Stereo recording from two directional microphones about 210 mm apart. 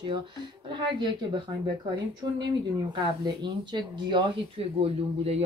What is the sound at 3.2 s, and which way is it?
Speech, 20° right (ahead or behind).